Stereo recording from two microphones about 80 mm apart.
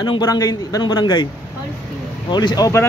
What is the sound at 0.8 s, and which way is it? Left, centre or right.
Speech, left.